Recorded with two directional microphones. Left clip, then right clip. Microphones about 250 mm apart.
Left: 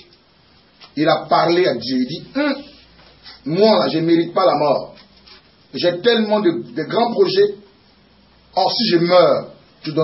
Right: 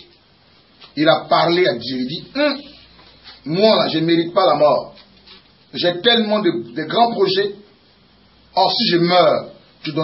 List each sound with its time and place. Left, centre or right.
0.8 s a man's voice: centre
5.7 s a man's voice: centre
8.5 s a man's voice: centre